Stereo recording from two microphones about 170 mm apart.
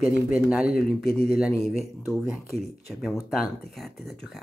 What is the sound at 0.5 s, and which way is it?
Speech, 5° right (ahead or behind).